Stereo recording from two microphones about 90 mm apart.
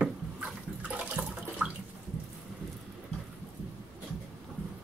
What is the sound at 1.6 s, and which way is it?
Bathtub, 15° right (ahead or behind).